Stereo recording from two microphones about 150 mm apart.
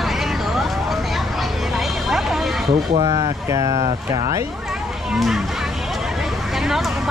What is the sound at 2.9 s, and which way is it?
Speech, 25° right (ahead or behind).